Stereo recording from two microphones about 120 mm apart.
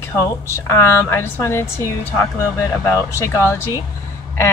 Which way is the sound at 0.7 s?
25° left (ahead or behind).